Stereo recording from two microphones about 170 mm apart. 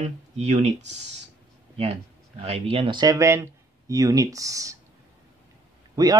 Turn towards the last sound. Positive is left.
turn(degrees=-20)  # may be behind; listen again after turning